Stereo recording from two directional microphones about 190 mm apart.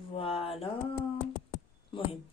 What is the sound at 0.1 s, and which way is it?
Mantra, 30° left (ahead or behind).